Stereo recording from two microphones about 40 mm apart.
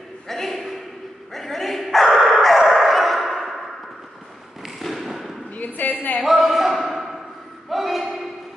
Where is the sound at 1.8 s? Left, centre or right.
Centre.